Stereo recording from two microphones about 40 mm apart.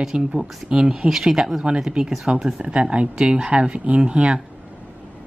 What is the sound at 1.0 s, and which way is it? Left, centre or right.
Speech, centre.